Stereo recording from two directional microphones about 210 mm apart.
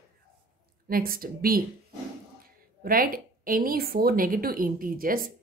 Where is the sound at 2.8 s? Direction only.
45° right (ahead or behind).